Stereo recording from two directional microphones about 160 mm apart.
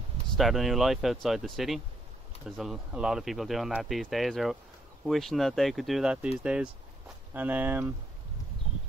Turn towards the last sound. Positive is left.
turn(degrees=-10)  # may be behind; listen again after turning